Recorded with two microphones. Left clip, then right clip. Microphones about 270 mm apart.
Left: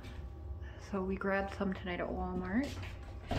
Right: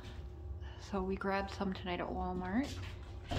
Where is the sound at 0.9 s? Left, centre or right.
Centre.